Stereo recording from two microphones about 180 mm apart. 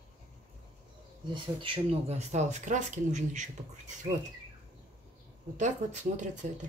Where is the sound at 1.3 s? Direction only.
30° right (ahead or behind).